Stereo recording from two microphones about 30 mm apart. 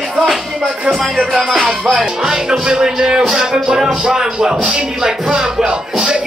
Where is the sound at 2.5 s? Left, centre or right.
Right.